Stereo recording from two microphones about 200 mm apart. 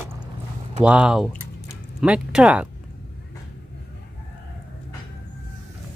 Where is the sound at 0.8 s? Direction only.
5° right (ahead or behind).